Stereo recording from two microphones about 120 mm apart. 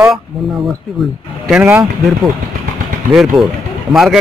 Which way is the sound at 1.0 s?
Centre (ahead or behind).